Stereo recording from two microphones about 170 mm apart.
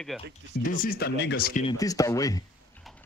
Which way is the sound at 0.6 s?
55° left (ahead or behind).